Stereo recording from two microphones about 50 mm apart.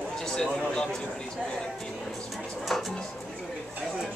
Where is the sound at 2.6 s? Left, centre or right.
Centre.